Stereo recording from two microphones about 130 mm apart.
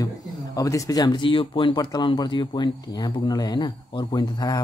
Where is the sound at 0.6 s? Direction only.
25° left (ahead or behind).